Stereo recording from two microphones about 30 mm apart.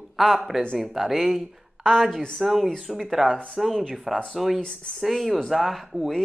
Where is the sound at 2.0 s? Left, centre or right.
Centre.